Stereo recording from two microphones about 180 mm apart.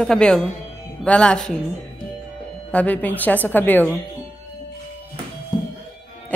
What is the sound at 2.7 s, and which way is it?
A woman's voice, 10° left (ahead or behind).